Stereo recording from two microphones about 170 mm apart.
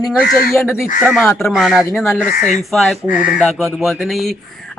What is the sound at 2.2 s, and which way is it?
Speech, 45° left (ahead or behind).